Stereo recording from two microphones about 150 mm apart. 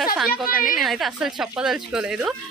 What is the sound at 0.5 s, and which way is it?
Speech, 65° left (ahead or behind).